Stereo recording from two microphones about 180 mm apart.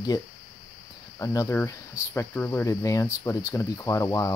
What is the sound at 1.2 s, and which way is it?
Speech, 15° left (ahead or behind).